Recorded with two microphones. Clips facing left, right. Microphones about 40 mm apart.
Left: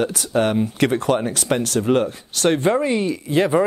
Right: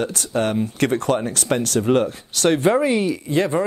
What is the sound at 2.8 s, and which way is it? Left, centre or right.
Speech, centre.